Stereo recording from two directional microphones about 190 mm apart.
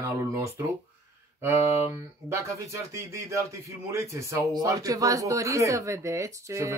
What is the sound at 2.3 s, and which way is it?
A man's voice, 15° right (ahead or behind).